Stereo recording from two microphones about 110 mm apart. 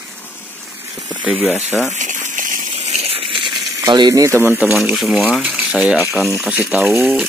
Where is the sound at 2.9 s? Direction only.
65° right (ahead or behind).